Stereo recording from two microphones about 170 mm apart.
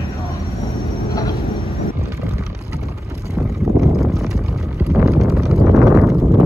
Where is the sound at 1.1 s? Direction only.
20° left (ahead or behind).